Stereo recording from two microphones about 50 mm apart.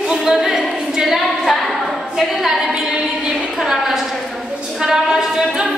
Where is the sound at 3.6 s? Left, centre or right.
Centre.